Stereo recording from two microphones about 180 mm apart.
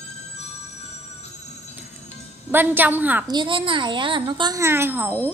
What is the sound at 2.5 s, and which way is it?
Speech, 10° right (ahead or behind).